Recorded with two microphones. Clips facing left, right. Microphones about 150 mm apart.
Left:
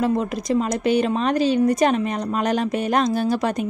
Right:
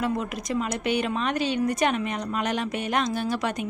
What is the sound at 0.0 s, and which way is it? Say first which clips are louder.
Speech: left 6 dB; 35° left (ahead or behind).